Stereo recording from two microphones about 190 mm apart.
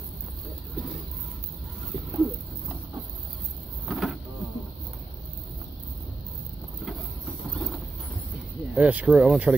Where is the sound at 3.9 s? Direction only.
Centre (ahead or behind).